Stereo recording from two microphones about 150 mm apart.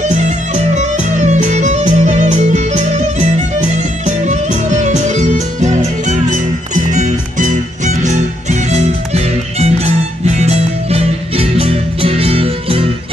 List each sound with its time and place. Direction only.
0.0 s music: 50° right (ahead or behind)